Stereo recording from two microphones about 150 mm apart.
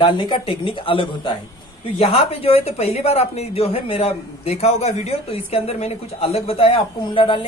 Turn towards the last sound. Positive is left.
turn(degrees=35)  # may be behind; listen again after turning